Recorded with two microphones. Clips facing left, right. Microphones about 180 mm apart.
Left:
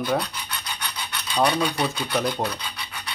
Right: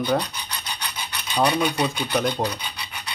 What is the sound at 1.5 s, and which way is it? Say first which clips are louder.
Speech: right 3 dB; 25° right (ahead or behind).